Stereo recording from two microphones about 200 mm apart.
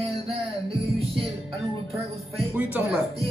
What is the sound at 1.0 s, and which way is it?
Music, 30° right (ahead or behind).